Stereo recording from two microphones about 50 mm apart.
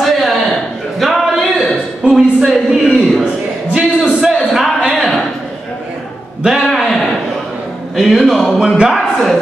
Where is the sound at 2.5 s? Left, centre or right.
Centre.